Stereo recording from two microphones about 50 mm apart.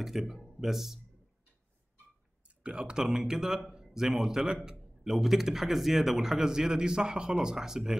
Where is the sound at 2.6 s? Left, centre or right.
Centre.